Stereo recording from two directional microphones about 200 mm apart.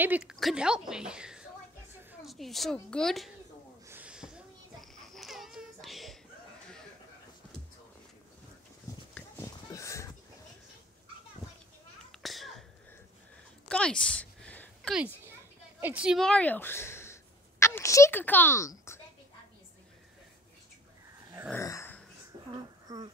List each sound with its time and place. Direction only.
0.0 s a woman's voice: 5° right (ahead or behind)
3.8 s a sound: 10° right (ahead or behind)
5.1 s baby cry: centre (ahead or behind)
9.1 s a sound: 15° left (ahead or behind)
12.1 s sneeze: centre (ahead or behind)
13.7 s a sound: 5° left (ahead or behind)
15.8 s speech: 5° right (ahead or behind); by 18.9 s 15° left (ahead or behind)
21.5 s dog: 15° left (ahead or behind)
22.9 s speech: 15° right (ahead or behind)